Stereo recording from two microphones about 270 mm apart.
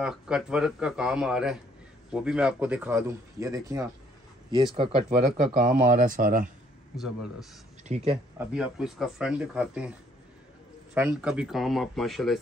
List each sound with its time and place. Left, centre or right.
0.0 s speech: centre; by 6.5 s right
8.1 s speech: centre
11.0 s speech: centre